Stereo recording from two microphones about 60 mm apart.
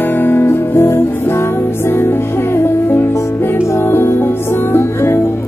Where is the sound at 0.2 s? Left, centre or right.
Left.